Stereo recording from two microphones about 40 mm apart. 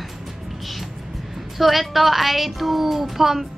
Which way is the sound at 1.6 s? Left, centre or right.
Centre.